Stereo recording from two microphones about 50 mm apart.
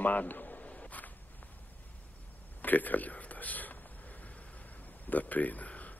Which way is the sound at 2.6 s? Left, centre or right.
Left.